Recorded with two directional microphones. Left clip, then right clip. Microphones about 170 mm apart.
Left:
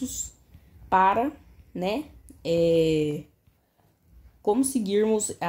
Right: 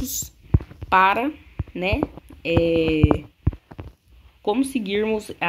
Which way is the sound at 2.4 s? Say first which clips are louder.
Right 2 dB; 85° left.